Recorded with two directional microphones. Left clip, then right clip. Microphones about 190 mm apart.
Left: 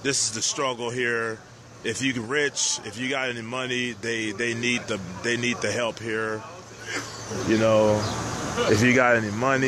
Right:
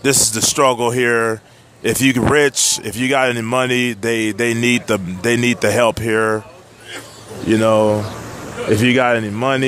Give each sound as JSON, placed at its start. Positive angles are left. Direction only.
{"t": 0.0, "sound": "speech", "side_deg": -50}
{"t": 7.4, "sound": "speech", "side_deg": -50}